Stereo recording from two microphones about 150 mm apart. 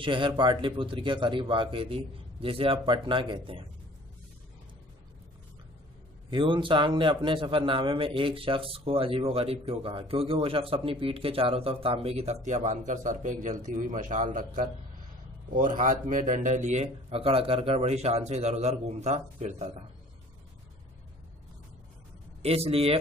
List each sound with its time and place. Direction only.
0.0 s a man's voice: 35° right (ahead or behind)
6.3 s a man's voice: 35° right (ahead or behind)
22.4 s a man's voice: 40° right (ahead or behind)